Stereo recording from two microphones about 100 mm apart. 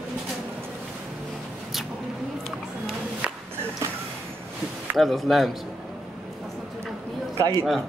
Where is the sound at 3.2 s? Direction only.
10° right (ahead or behind).